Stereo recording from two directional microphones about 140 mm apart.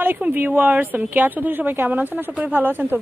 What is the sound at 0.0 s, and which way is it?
A woman's voice, 15° right (ahead or behind).